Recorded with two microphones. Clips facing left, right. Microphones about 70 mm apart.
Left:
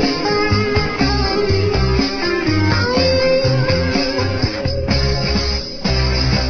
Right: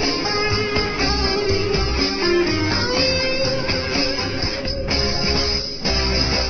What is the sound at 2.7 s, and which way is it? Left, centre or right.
Music, left.